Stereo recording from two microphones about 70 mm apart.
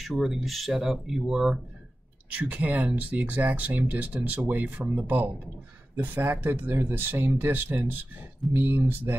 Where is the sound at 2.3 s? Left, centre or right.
Right.